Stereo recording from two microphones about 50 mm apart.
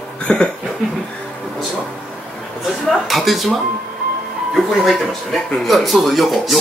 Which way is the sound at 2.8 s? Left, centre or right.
Centre.